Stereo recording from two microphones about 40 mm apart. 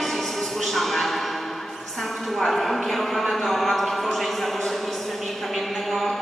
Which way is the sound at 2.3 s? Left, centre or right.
Centre.